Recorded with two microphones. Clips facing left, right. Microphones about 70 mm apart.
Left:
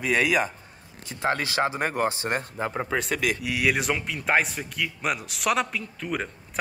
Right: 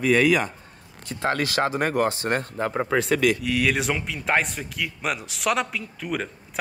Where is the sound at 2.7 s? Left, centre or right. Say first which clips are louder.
Right 6 dB; centre.